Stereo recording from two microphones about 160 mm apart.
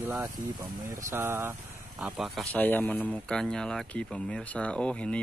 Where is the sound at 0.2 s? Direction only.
20° right (ahead or behind).